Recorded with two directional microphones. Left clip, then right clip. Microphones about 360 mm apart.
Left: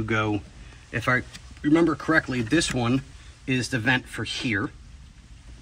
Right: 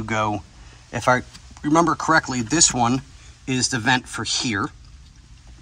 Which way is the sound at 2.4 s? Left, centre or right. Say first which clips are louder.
Right 5 dB; centre.